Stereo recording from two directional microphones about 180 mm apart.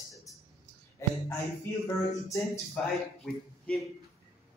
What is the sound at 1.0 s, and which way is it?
Speech, 15° left (ahead or behind).